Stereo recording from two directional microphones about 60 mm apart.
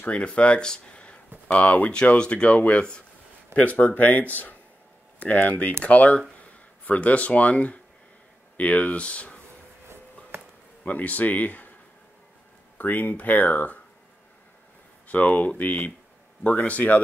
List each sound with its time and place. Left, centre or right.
0.0 s speech: left
10.8 s speech: left
12.7 s speech: left
15.0 s speech: left